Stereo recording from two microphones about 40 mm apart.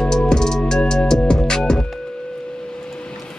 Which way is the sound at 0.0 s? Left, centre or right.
Centre.